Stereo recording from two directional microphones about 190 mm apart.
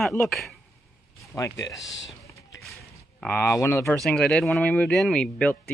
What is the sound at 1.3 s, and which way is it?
Speech, 15° left (ahead or behind).